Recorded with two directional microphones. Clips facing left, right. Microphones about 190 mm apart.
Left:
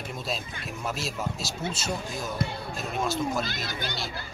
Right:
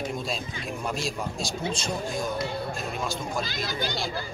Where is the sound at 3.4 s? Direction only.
55° left (ahead or behind).